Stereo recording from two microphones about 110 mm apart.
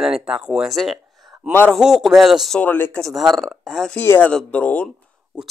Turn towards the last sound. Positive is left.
turn(degrees=15)  # may be behind; listen again after turning